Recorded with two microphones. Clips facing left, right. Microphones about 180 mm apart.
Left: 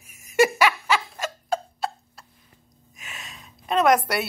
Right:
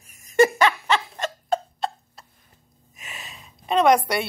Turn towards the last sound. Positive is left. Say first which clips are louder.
# right 2 dB
turn(degrees=0)  # may be behind; listen again after turning